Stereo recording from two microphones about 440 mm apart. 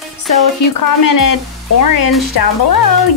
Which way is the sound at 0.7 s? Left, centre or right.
Left.